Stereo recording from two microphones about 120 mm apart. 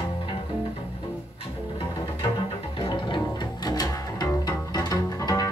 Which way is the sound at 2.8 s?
45° left (ahead or behind).